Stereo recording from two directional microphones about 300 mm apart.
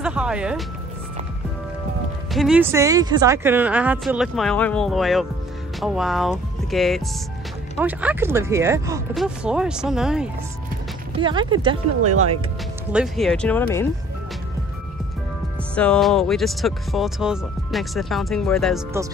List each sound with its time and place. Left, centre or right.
0.0 s music: centre
2.3 s speech: centre
11.1 s speech: centre
12.9 s speech: centre
15.7 s speech: centre